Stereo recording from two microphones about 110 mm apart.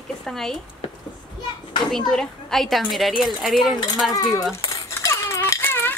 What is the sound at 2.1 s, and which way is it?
A woman's voice, 5° left (ahead or behind).